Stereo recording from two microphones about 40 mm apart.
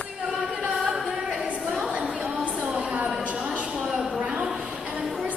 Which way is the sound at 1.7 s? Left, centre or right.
Centre.